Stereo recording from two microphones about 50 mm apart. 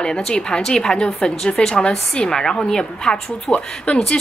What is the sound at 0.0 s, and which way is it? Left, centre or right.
A woman's voice, centre.